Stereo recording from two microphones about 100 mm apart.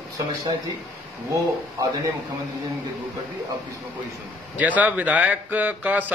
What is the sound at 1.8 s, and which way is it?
Speech, 35° right (ahead or behind).